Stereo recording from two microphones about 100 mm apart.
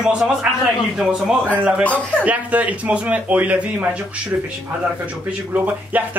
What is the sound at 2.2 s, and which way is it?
Speech, 15° right (ahead or behind).